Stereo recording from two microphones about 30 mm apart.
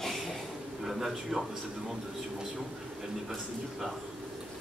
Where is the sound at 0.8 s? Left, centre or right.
Centre.